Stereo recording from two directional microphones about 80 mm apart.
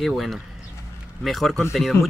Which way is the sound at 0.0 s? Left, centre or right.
Centre.